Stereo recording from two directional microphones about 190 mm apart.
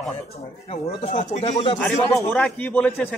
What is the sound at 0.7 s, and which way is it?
Speech, 30° left (ahead or behind).